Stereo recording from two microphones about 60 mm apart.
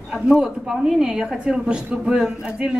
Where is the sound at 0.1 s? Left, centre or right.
Centre.